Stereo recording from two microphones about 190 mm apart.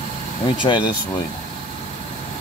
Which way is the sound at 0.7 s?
20° left (ahead or behind).